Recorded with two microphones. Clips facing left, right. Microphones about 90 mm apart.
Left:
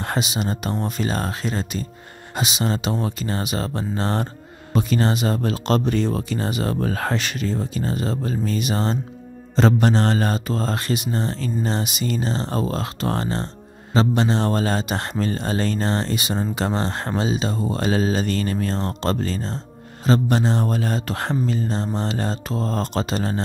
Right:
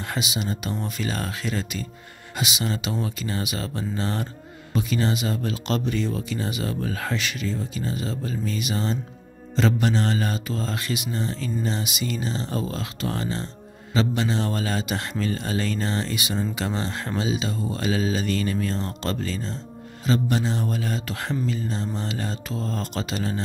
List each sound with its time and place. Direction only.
0.0 s speech: 40° left (ahead or behind)